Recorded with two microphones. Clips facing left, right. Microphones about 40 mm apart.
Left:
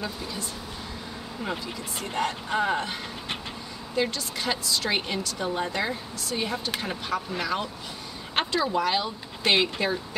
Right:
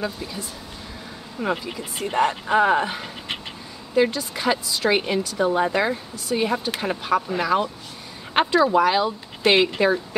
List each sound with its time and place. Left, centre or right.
0.0 s speech: centre
1.4 s speech: right